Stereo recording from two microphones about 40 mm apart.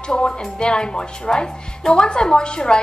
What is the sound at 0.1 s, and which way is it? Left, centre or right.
A woman's voice, centre.